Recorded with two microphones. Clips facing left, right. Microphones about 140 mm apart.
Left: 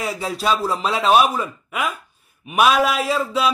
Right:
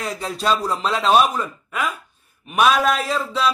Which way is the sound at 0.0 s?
5° left (ahead or behind).